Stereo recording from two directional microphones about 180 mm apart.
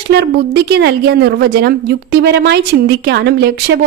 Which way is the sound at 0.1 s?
65° right (ahead or behind).